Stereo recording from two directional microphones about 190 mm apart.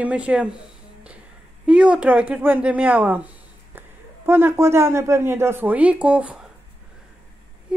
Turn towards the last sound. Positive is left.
turn(degrees=-5)  # may be behind; listen again after turning